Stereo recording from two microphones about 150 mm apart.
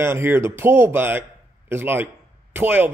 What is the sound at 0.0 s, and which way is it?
A man's voice, 15° right (ahead or behind).